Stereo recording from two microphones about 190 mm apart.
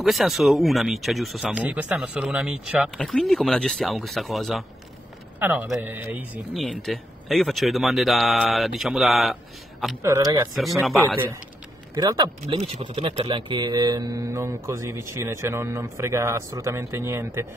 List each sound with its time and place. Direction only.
0.0 s speech: centre (ahead or behind)
3.0 s speech: 5° left (ahead or behind)
6.5 s speech: centre (ahead or behind)
10.0 s speech: 15° right (ahead or behind)
10.5 s speech: centre (ahead or behind)
11.9 s speech: 20° right (ahead or behind)